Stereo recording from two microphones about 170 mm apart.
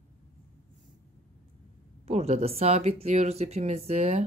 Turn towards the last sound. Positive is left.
turn(degrees=-40)  # may be behind; listen again after turning